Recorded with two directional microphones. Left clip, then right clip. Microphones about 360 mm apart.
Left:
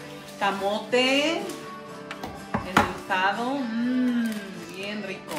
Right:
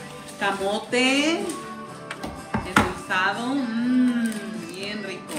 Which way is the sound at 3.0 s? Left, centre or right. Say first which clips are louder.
Right 1 dB; centre.